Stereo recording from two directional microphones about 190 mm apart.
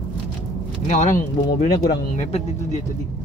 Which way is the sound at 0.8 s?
40° left (ahead or behind).